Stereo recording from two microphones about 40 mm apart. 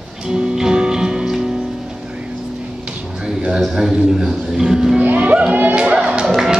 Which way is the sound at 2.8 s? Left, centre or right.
Centre.